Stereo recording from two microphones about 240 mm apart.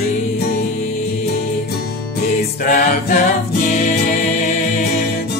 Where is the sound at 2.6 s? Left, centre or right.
Left.